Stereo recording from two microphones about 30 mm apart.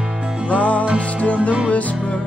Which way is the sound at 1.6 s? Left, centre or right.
Left.